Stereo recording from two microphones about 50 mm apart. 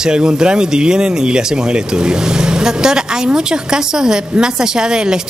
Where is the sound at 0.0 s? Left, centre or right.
Centre.